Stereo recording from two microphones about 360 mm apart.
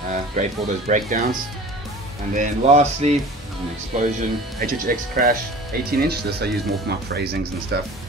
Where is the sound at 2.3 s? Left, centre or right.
Centre.